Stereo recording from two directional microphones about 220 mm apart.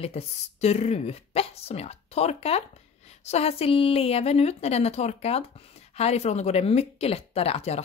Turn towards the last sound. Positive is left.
turn(degrees=30)  # may be behind; listen again after turning